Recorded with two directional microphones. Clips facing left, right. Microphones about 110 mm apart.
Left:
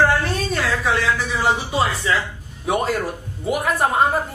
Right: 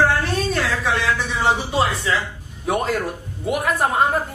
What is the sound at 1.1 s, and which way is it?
Speech, centre (ahead or behind).